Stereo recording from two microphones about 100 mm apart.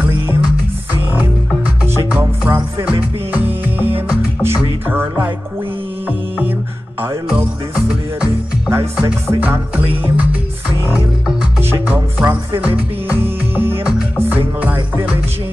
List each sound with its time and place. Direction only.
2.1 s music: 15° right (ahead or behind)
4.4 s music: 20° right (ahead or behind)
9.4 s music: 20° right (ahead or behind)
11.7 s music: 20° right (ahead or behind)